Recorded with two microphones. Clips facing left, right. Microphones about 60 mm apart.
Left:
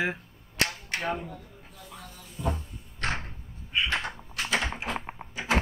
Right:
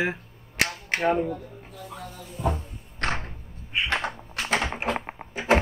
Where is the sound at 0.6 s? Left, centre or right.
Right.